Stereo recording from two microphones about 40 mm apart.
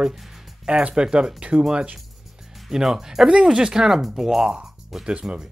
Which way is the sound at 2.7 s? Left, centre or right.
Centre.